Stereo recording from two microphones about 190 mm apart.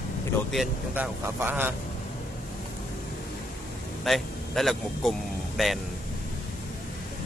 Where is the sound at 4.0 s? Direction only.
Centre (ahead or behind).